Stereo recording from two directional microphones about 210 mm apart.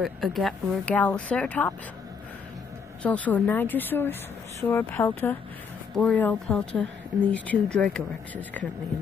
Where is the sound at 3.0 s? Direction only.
5° left (ahead or behind).